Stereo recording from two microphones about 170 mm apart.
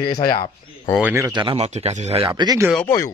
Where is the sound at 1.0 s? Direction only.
15° right (ahead or behind).